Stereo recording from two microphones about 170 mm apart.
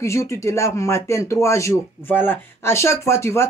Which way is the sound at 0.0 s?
15° left (ahead or behind).